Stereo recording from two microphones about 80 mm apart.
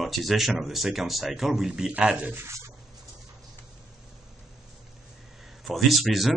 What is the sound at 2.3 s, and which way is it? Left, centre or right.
Speech, right.